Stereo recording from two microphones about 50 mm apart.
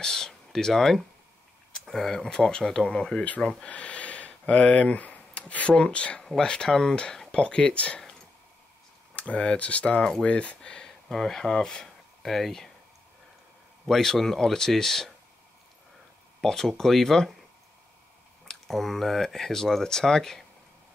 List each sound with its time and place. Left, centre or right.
0.0 s a sound: centre
2.2 s speech: centre
9.1 s speech: left; by 12.7 s centre
13.8 s speech: centre
16.3 s speech: centre
18.5 s speech: centre